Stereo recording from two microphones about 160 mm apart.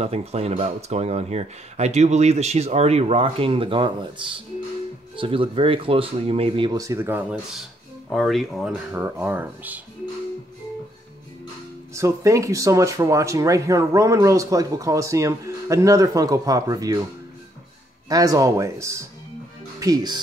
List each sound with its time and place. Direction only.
0.0 s speech: 40° right (ahead or behind); by 7.6 s 10° right (ahead or behind)
8.1 s speech: centre (ahead or behind)
11.9 s speech: 20° right (ahead or behind)
18.0 s speech: 20° right (ahead or behind)